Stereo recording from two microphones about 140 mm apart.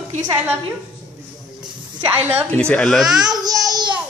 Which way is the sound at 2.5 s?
5° left (ahead or behind).